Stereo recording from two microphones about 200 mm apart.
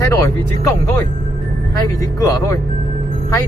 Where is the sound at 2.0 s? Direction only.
15° left (ahead or behind).